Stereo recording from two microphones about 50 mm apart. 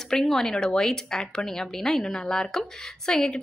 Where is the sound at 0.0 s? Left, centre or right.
Centre.